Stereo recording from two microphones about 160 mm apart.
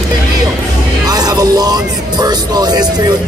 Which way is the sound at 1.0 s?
25° right (ahead or behind).